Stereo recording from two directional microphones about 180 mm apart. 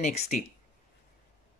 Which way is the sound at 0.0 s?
40° left (ahead or behind).